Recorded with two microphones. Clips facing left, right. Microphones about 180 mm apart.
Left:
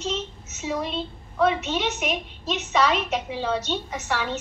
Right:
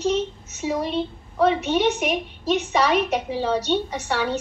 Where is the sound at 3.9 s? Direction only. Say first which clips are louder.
Right 3 dB; 30° right (ahead or behind).